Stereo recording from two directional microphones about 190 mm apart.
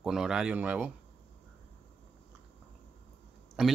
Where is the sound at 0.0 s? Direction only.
5° right (ahead or behind).